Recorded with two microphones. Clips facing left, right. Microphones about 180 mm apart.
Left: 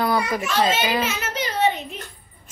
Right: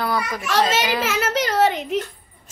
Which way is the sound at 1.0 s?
90° right.